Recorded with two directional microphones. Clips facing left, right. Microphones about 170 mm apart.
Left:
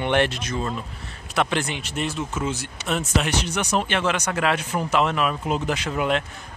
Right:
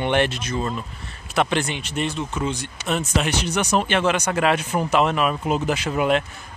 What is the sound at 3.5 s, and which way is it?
Speech, 50° right (ahead or behind).